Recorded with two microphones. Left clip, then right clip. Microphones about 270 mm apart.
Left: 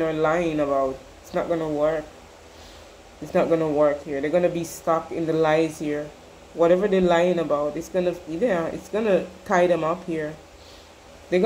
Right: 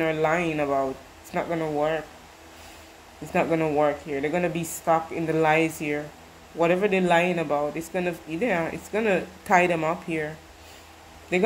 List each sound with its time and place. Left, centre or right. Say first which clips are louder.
0.0 s a man's voice: left 2 dB; right
3.3 s a man's voice: left 3 dB; right